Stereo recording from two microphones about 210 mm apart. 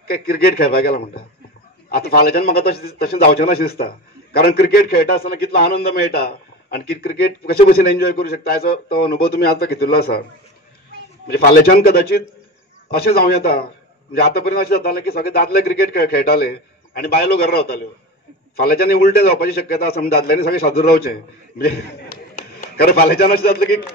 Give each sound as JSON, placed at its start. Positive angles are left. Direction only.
{"t": 0.0, "sound": "a man's voice", "side_deg": 45}
{"t": 11.3, "sound": "a man's voice", "side_deg": 45}